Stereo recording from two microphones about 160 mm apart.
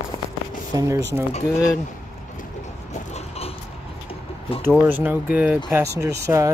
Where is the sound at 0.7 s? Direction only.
20° right (ahead or behind).